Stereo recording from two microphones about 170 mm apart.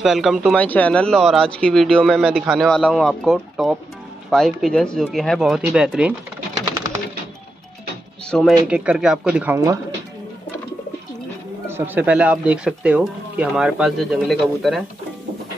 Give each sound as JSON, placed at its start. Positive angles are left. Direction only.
{"t": 0.0, "sound": "speech", "side_deg": 0}
{"t": 0.6, "sound": "speech", "side_deg": 10}
{"t": 8.3, "sound": "speech", "side_deg": 5}
{"t": 9.6, "sound": "speech", "side_deg": -20}
{"t": 11.6, "sound": "speech", "side_deg": -15}